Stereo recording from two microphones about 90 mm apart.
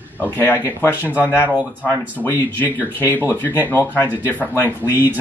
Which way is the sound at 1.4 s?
20° right (ahead or behind).